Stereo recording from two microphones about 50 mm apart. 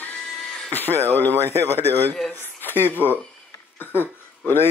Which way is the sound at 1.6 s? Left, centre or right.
Left.